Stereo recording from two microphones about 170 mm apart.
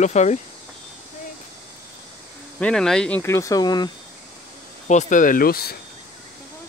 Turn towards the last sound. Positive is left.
turn(degrees=65)  # may be behind; listen again after turning